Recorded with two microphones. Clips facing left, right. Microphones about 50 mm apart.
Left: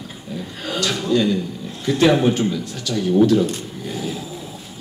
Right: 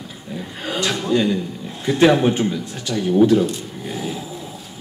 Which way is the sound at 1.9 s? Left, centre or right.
Right.